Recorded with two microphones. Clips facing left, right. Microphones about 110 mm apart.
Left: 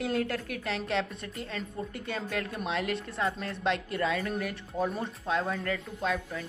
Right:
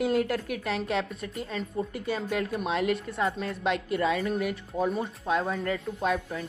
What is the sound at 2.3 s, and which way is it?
Speech, 20° right (ahead or behind).